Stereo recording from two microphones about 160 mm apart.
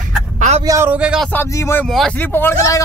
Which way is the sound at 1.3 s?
15° left (ahead or behind).